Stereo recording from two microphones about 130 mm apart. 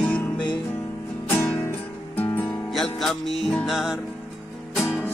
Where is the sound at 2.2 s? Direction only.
15° left (ahead or behind).